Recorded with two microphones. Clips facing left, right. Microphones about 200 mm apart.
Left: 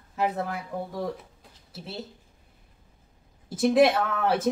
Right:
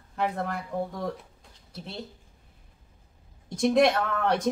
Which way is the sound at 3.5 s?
5° left (ahead or behind).